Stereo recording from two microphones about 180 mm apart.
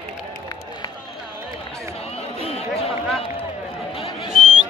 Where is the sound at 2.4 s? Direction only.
35° left (ahead or behind).